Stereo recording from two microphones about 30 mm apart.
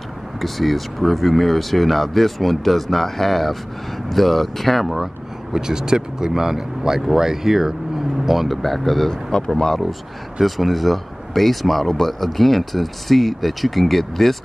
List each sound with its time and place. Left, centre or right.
0.4 s speech: centre
4.9 s speech: centre
9.1 s speech: left
10.4 s speech: centre